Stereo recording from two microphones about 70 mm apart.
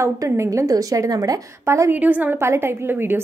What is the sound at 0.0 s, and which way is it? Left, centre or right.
A woman's voice, right.